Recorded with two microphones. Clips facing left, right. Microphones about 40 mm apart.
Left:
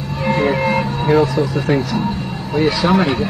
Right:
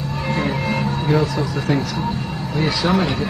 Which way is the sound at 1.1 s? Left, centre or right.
Centre.